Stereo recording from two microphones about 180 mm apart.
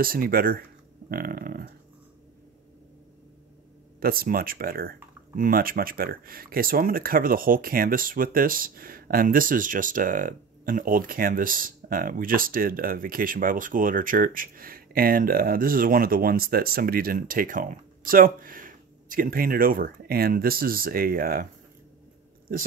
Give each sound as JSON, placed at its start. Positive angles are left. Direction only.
{"t": 0.0, "sound": "speech", "side_deg": -55}
{"t": 4.0, "sound": "speech", "side_deg": -55}